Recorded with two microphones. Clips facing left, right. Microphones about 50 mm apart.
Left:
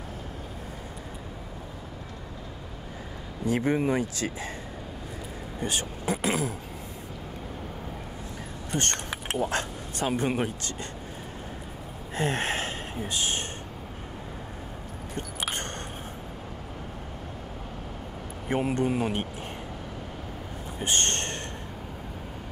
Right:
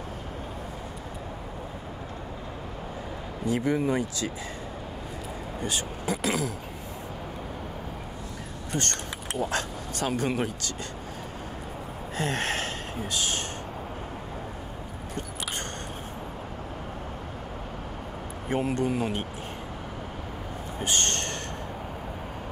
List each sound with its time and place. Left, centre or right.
3.4 s speech: left
5.6 s speech: left
8.7 s speech: left
12.2 s speech: left
18.5 s speech: left
20.8 s a sound: left